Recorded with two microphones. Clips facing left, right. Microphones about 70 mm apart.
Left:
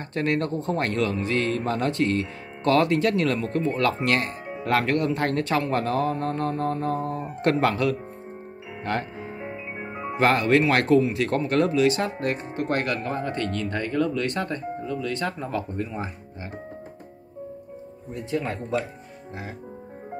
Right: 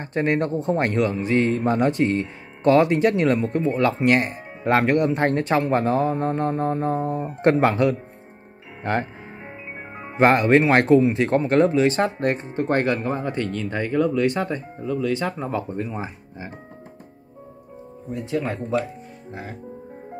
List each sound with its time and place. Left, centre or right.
0.0 s speech: right
9.8 s music: centre
10.1 s speech: right
18.1 s speech: centre